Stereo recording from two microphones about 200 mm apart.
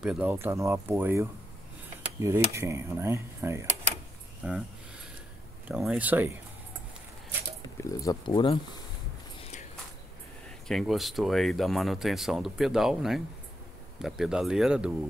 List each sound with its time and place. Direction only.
0.0 s speech: 5° right (ahead or behind)
4.4 s speech: centre (ahead or behind)
5.7 s speech: 5° right (ahead or behind)
7.7 s speech: 15° left (ahead or behind)
9.4 s walk: 35° left (ahead or behind)
10.7 s speech: centre (ahead or behind)